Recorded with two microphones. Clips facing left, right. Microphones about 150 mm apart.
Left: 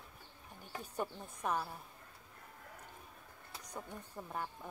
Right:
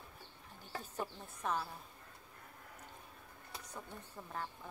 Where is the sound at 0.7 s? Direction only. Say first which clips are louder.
Left 2 dB; 15° left (ahead or behind).